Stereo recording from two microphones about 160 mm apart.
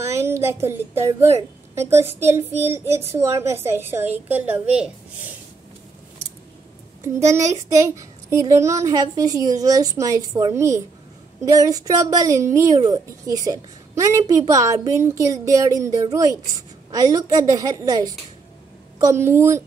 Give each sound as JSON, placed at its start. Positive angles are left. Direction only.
{"t": 0.0, "sound": "a woman's voice", "side_deg": -15}
{"t": 7.0, "sound": "a woman's voice", "side_deg": -20}